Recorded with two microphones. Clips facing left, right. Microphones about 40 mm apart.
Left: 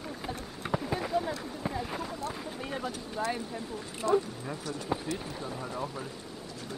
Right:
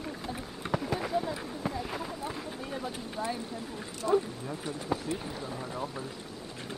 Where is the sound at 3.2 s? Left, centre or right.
Left.